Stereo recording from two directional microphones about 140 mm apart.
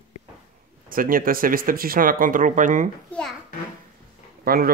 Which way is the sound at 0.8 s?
90° right.